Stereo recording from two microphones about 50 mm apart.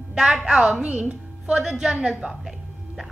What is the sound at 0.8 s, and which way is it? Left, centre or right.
Speech, right.